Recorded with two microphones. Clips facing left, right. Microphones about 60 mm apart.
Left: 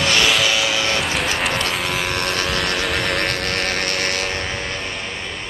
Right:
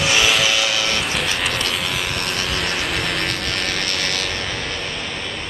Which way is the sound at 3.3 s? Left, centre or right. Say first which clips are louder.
Left 2 dB; left.